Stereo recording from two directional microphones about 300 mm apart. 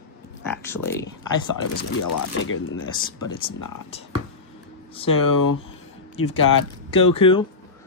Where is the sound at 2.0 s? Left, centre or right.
Left.